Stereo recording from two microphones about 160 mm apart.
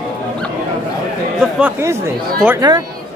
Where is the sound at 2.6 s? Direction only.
25° right (ahead or behind).